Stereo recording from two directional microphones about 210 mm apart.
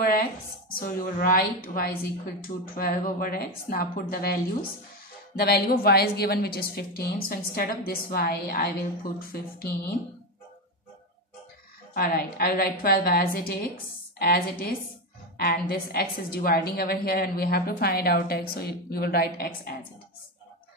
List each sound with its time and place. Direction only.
0.7 s a woman's voice: 45° left (ahead or behind)
11.9 s a woman's voice: 45° left (ahead or behind)